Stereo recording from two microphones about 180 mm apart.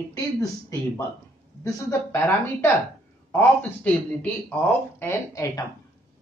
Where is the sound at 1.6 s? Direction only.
15° left (ahead or behind).